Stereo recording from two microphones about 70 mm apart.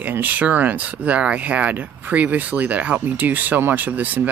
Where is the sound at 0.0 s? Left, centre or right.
Right.